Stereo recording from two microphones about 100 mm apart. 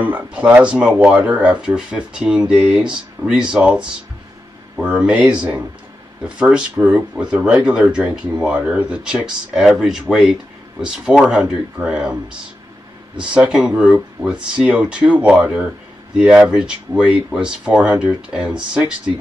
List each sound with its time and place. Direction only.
0.0 s speech: 15° right (ahead or behind)